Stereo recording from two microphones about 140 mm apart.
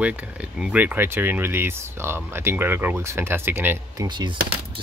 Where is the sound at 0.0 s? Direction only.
10° right (ahead or behind).